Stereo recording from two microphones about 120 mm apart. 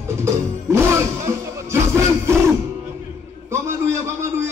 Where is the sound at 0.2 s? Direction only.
20° right (ahead or behind).